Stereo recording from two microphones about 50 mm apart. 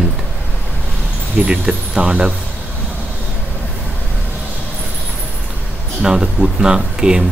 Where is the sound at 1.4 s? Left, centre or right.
Centre.